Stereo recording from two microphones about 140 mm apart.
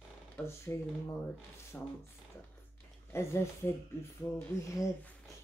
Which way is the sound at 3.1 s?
20° left (ahead or behind).